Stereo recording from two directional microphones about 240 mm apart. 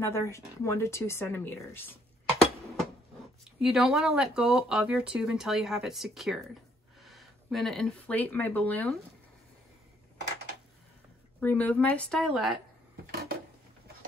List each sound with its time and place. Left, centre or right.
0.0 s speech: centre
3.6 s speech: centre
11.3 s speech: centre
13.1 s a sound: right